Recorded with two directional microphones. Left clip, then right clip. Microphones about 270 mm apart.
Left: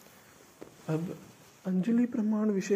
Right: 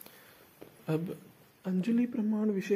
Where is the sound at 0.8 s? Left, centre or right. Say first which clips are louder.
Right 1 dB; centre.